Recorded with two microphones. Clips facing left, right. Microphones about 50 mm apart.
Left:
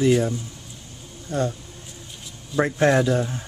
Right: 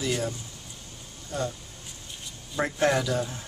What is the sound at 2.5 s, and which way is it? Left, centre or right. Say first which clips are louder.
Speech: left 7 dB; centre.